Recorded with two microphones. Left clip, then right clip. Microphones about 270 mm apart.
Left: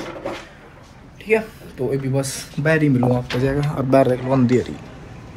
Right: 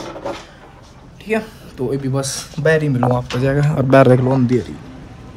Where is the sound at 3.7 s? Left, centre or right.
Right.